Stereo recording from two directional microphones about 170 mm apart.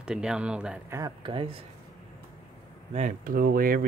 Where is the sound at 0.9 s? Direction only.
25° right (ahead or behind).